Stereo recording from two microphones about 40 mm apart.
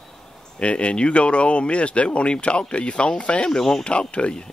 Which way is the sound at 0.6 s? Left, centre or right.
Left.